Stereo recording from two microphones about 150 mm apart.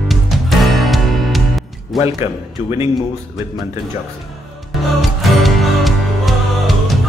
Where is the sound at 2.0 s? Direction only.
20° right (ahead or behind).